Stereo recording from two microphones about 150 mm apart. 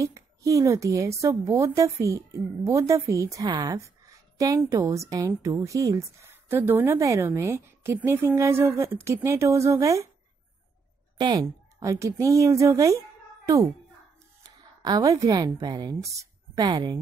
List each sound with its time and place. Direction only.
0.0 s speech: 20° right (ahead or behind)
11.1 s speech: 30° right (ahead or behind)
14.4 s a woman's voice: 25° right (ahead or behind)